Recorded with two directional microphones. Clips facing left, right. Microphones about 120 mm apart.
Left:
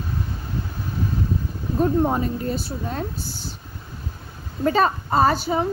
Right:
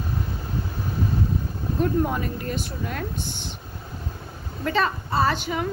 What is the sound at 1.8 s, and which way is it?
Speech, 30° left (ahead or behind).